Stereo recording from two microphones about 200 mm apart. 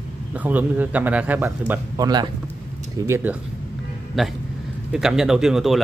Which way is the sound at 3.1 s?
10° right (ahead or behind).